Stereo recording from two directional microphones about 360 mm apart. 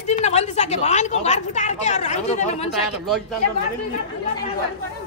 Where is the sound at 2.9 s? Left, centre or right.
Centre.